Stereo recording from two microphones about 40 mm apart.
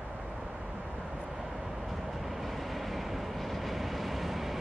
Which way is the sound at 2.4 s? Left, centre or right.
Centre.